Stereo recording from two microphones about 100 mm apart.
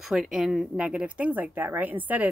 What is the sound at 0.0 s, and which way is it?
Speech, centre (ahead or behind).